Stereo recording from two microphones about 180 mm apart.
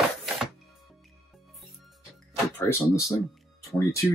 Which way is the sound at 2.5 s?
15° left (ahead or behind).